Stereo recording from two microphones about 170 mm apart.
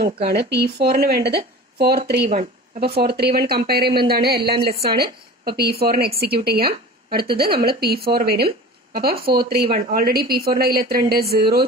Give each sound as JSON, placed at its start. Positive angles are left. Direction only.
{"t": 0.0, "sound": "a woman's voice", "side_deg": -65}